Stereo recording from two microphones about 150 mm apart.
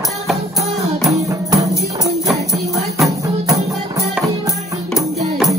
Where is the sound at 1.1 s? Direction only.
20° right (ahead or behind).